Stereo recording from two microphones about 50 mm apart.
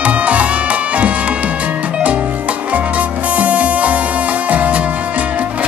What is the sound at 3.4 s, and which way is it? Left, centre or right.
Music, right.